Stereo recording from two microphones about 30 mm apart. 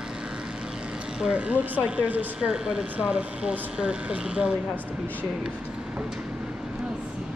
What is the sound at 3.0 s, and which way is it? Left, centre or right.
Speech, right.